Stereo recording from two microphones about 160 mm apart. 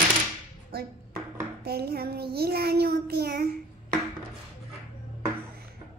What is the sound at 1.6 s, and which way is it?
Child singing, 80° right.